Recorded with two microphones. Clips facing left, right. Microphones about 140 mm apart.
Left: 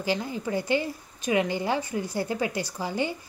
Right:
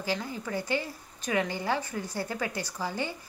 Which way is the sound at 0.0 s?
20° left (ahead or behind).